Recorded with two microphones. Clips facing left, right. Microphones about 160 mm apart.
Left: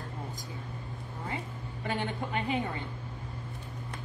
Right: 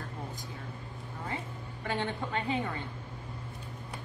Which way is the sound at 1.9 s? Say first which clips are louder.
Even; 15° left (ahead or behind).